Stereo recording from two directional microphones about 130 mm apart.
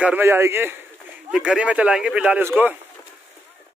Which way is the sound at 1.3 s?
5° right (ahead or behind).